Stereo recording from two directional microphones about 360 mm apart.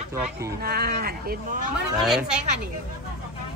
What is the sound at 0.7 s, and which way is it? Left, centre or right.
Speech, right.